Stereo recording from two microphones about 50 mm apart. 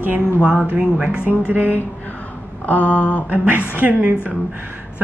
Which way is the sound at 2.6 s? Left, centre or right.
Left.